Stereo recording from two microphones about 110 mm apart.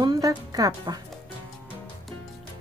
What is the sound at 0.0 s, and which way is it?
Music, 40° right (ahead or behind).